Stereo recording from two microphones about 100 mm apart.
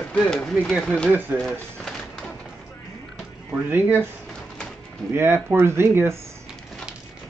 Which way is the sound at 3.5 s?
20° right (ahead or behind).